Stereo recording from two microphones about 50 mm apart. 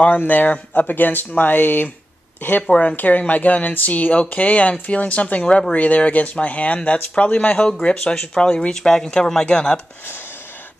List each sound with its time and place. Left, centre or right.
0.0 s speech: left
2.6 s speech: left
3.0 s speech: left
7.8 s speech: centre